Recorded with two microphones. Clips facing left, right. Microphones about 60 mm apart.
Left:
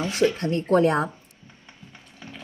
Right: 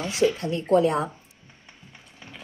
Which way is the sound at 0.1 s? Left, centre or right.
Left.